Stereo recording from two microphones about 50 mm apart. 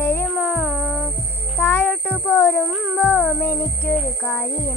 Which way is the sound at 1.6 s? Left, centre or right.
Left.